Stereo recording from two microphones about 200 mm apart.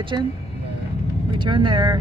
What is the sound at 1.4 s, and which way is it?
Speech, 25° right (ahead or behind).